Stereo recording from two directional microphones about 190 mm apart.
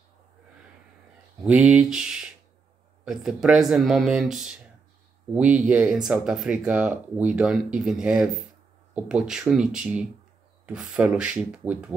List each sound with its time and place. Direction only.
1.4 s speech: 5° right (ahead or behind)